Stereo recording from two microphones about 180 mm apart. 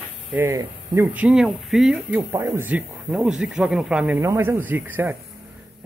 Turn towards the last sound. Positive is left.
turn(degrees=-10)  # may be behind; listen again after turning